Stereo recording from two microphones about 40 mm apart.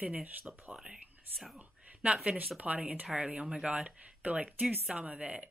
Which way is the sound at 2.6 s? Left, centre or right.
Right.